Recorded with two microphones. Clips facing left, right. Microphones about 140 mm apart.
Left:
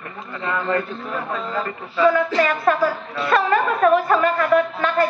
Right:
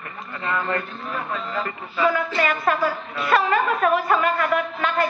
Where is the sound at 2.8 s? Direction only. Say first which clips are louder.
Left 3 dB; 40° left (ahead or behind).